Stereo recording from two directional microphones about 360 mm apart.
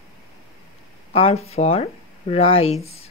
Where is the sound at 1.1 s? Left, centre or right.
Centre.